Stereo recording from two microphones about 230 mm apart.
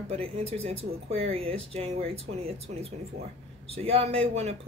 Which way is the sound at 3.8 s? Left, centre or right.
Right.